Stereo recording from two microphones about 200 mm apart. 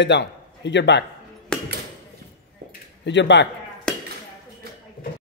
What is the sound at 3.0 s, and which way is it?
Speech, 60° left (ahead or behind).